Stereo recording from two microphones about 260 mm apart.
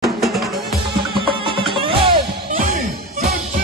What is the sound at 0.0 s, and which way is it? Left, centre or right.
Music, centre.